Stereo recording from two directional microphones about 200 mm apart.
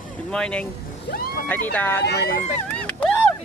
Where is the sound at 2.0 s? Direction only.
55° left (ahead or behind).